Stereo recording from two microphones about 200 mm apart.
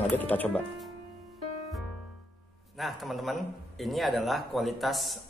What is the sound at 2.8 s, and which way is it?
Speech, centre (ahead or behind).